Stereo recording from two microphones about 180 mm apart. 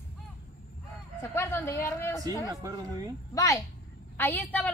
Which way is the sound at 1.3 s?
15° left (ahead or behind).